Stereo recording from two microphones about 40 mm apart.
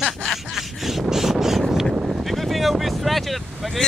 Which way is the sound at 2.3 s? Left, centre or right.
Centre.